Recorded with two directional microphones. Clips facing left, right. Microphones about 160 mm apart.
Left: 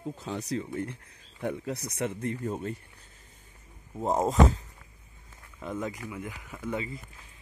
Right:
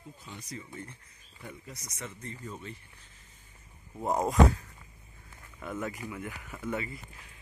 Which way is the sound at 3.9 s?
25° left (ahead or behind).